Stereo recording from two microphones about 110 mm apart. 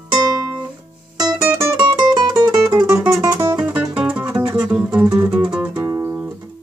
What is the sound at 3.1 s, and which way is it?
Music, 30° right (ahead or behind).